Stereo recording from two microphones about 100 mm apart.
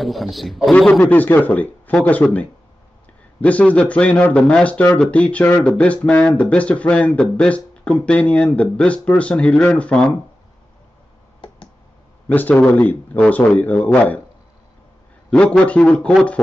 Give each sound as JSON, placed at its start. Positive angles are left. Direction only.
{"t": 0.0, "sound": "speech", "side_deg": 0}
{"t": 12.3, "sound": "speech", "side_deg": 15}
{"t": 15.2, "sound": "speech", "side_deg": 10}